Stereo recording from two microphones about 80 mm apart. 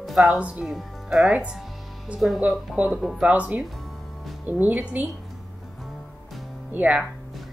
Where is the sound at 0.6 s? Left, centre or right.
Centre.